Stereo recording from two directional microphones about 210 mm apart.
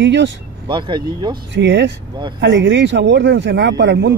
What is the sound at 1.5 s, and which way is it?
Speech, 55° right (ahead or behind).